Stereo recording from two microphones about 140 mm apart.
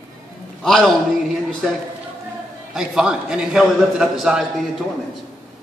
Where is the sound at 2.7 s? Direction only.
5° right (ahead or behind).